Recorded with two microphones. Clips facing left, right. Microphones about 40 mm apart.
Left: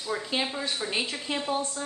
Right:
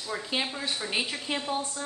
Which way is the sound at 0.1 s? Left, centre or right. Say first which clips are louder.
Left 2 dB; centre.